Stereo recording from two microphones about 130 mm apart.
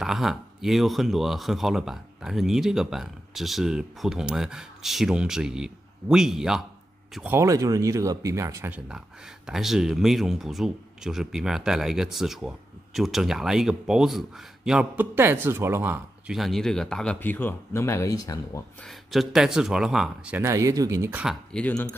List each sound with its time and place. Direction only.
0.0 s speech: centre (ahead or behind)
7.2 s speech: 25° right (ahead or behind)
8.7 s speech: 5° right (ahead or behind)
16.3 s speech: centre (ahead or behind); by 18.6 s 30° left (ahead or behind)
18.9 s speech: centre (ahead or behind)
20.3 s speech: 20° right (ahead or behind)
21.1 s speech: 10° right (ahead or behind)
21.5 s speech: 10° left (ahead or behind)